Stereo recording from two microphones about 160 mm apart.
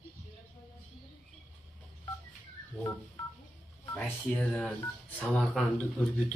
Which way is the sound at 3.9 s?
10° left (ahead or behind).